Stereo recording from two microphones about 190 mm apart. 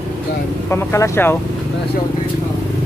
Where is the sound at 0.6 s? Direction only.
15° left (ahead or behind).